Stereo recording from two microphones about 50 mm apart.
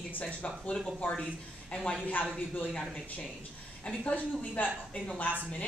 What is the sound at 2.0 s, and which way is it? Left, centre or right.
Speech, left.